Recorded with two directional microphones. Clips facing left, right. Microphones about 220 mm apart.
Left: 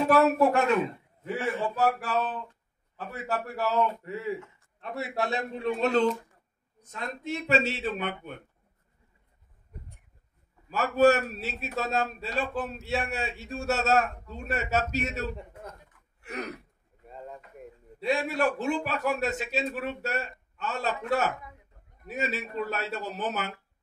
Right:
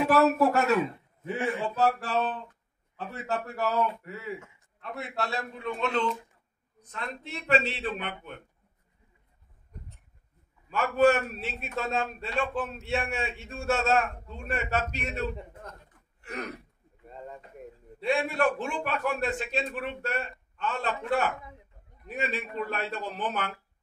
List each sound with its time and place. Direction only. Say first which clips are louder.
0.1 s speech: left 1 dB; centre (ahead or behind)
1.2 s a man's voice: even; 15° right (ahead or behind)
4.8 s a man's voice: left 3 dB; 5° left (ahead or behind)
5.6 s a man's voice: left 5 dB; 40° left (ahead or behind)
9.7 s a sound: even; 5° left (ahead or behind)
10.7 s a man's voice: left 1 dB; 40° left (ahead or behind)
16.2 s gasp: left 1 dB; centre (ahead or behind)
17.1 s speech: even; centre (ahead or behind)
18.0 s a man's voice: even; 40° left (ahead or behind)